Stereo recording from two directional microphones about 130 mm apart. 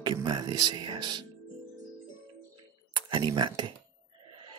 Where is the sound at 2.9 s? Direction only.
40° right (ahead or behind).